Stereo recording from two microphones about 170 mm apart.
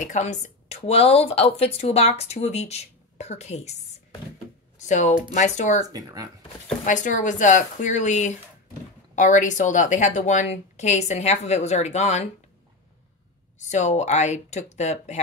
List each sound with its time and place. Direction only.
0.0 s speech: 45° left (ahead or behind)
4.8 s speech: 45° left (ahead or behind)
5.9 s speech: 20° right (ahead or behind)
6.8 s speech: 45° left (ahead or behind)
13.7 s speech: 45° left (ahead or behind)